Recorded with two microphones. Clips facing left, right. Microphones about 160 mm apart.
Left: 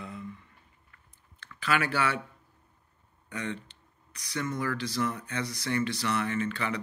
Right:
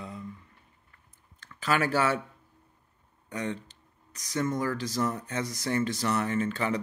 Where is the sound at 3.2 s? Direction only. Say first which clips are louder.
Right 2 dB; 40° right (ahead or behind).